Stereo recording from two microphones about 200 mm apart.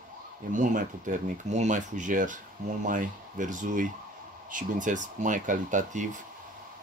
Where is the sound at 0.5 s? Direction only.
40° right (ahead or behind).